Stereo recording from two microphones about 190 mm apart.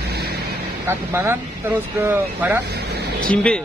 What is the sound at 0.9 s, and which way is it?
Speech, 10° right (ahead or behind).